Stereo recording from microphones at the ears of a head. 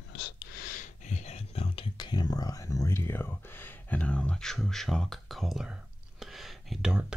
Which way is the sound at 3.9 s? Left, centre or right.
Centre.